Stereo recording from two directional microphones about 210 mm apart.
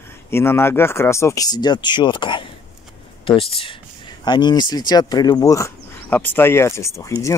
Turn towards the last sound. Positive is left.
turn(degrees=15)  # may be behind; listen again after turning